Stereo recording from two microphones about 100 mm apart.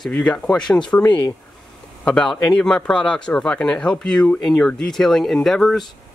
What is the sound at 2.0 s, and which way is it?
Speech, 10° left (ahead or behind).